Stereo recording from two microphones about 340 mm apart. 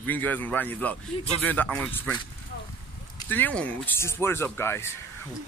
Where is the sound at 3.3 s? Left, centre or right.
Centre.